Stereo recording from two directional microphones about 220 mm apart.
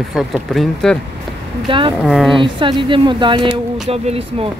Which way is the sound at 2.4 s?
20° right (ahead or behind).